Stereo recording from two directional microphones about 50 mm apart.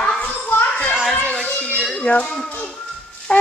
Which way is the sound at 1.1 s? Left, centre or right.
Left.